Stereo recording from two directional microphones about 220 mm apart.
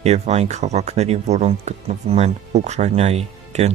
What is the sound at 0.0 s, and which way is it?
Speech, 30° right (ahead or behind).